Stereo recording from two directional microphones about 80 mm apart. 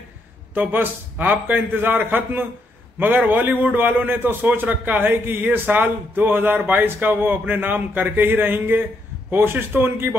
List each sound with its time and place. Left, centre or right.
0.6 s a man's voice: right